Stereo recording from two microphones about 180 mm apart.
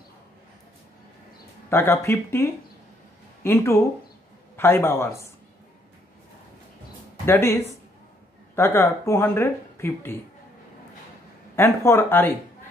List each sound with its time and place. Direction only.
1.7 s speech: 15° left (ahead or behind)
7.2 s speech: 15° left (ahead or behind)
11.5 s speech: 15° left (ahead or behind)